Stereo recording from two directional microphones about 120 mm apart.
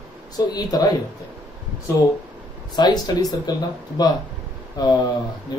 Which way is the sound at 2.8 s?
35° left (ahead or behind).